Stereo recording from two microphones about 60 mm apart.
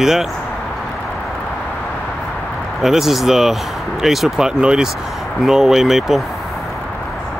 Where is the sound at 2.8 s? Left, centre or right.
Centre.